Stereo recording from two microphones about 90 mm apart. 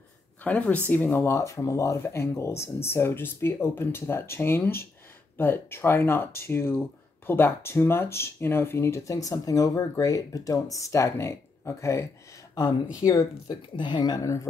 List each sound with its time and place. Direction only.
0.4 s speech: 15° left (ahead or behind); by 13.6 s 40° left (ahead or behind)
13.7 s speech: 60° left (ahead or behind)
14.2 s speech: 35° left (ahead or behind)